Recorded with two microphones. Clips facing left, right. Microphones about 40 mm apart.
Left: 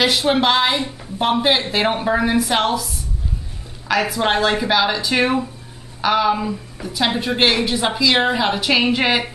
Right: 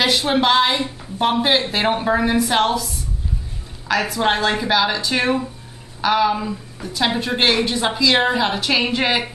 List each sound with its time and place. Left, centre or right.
0.0 s a woman's voice: centre